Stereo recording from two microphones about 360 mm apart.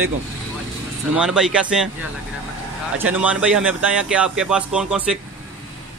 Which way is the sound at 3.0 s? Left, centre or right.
Centre.